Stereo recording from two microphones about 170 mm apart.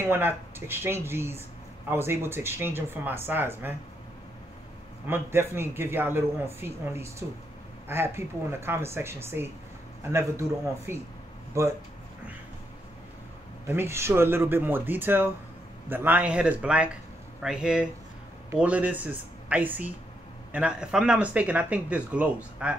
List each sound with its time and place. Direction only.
0.0 s speech: 10° right (ahead or behind)
5.0 s speech: 15° right (ahead or behind)
13.7 s speech: 15° right (ahead or behind)